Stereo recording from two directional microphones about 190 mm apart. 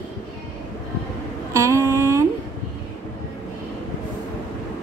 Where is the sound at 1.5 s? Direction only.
15° right (ahead or behind).